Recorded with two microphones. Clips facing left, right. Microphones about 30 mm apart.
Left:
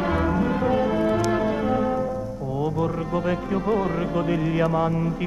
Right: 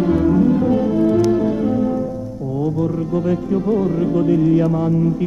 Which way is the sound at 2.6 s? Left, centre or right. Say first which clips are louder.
Right 5 dB; left.